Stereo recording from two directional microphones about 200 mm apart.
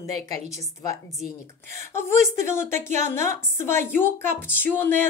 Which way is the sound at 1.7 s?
15° left (ahead or behind).